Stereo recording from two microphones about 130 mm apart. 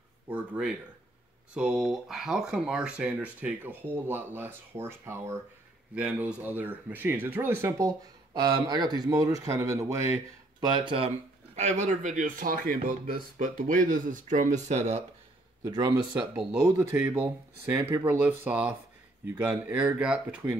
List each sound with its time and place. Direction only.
0.3 s speech: 10° right (ahead or behind)
5.9 s speech: 10° right (ahead or behind)
10.7 s speech: 45° right (ahead or behind)
15.6 s speech: 30° right (ahead or behind)
16.6 s speech: 20° right (ahead or behind)